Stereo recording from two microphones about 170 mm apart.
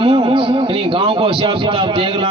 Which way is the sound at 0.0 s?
30° right (ahead or behind).